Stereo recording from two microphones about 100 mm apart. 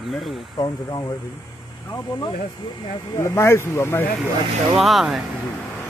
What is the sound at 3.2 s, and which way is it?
Speech, 25° left (ahead or behind).